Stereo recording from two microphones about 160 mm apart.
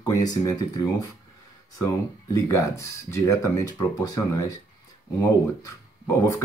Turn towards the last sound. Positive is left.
turn(degrees=20)  # may be behind; listen again after turning